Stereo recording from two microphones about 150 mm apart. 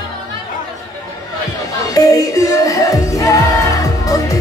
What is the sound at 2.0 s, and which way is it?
Music, 25° left (ahead or behind).